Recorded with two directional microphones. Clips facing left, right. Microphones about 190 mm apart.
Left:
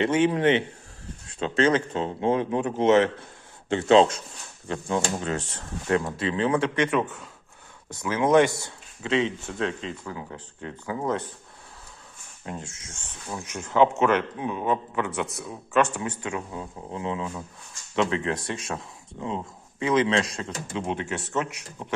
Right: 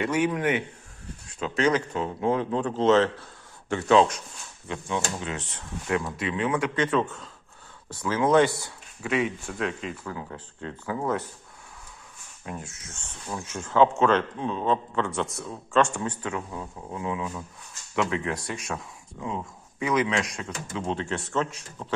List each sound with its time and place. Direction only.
0.0 s speech: 25° left (ahead or behind)
4.6 s speech: 40° left (ahead or behind)
6.7 s speech: 15° left (ahead or behind)
10.0 s speech: 15° left (ahead or behind)
12.5 s speech: 25° left (ahead or behind)
20.8 s speech: 15° left (ahead or behind)